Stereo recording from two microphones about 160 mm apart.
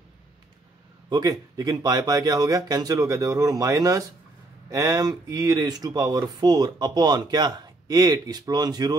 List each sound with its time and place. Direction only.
1.1 s speech: 25° right (ahead or behind)